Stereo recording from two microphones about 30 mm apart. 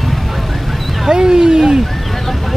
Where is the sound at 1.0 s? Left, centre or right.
Right.